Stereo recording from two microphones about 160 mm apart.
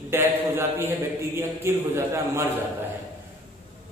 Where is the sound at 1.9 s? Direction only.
15° right (ahead or behind).